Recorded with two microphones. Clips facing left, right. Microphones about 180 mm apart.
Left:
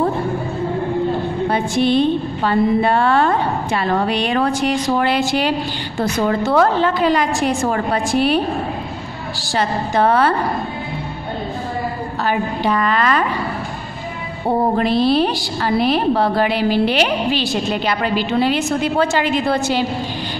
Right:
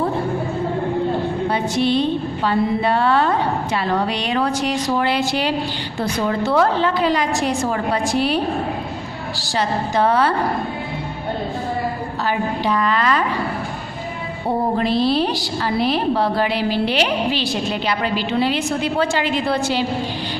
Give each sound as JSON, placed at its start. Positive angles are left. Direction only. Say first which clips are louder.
{"t": 1.5, "sound": "a woman's voice", "louder": "left 3 dB", "side_deg": 50}
{"t": 9.4, "sound": "a woman's voice", "louder": "left 1 dB", "side_deg": 55}
{"t": 12.3, "sound": "a woman's voice", "louder": "left 2 dB", "side_deg": 55}
{"t": 14.8, "sound": "a woman's voice", "louder": "left 2 dB", "side_deg": 55}